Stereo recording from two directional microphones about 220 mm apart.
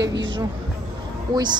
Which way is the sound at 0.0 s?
55° right (ahead or behind).